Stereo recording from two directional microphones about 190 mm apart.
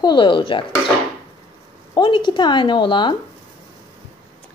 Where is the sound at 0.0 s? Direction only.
25° left (ahead or behind).